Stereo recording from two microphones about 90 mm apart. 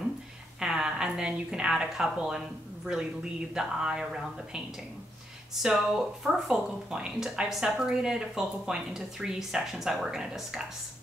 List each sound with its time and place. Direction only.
0.6 s a woman's voice: 10° right (ahead or behind)